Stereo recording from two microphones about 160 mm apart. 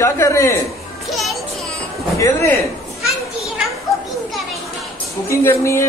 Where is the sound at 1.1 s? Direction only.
Centre (ahead or behind).